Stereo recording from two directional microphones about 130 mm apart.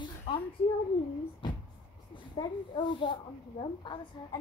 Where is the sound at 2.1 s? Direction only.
40° left (ahead or behind).